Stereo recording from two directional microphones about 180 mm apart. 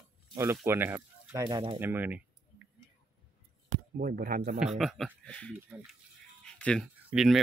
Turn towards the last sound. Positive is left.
turn(degrees=-5)  # may be behind; listen again after turning